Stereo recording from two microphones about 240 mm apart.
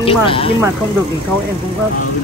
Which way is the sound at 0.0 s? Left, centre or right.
Left.